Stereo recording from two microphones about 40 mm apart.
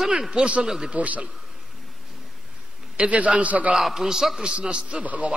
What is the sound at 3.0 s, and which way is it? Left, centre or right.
Speech, right.